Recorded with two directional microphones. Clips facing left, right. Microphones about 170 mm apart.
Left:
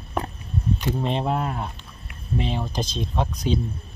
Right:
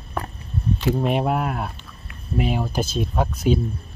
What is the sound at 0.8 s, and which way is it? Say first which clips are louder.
Speech: right 5 dB; 10° right (ahead or behind).